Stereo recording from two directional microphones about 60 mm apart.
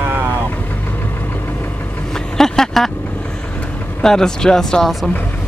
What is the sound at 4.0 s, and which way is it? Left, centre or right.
Speech, centre.